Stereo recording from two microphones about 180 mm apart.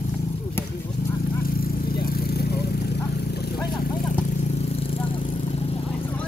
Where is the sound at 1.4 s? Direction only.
55° left (ahead or behind).